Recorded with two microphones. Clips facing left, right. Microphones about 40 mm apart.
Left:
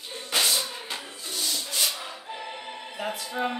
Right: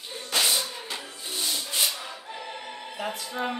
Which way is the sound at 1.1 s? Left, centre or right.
Centre.